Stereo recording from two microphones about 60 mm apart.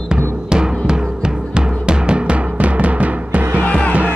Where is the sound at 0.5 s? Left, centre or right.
Centre.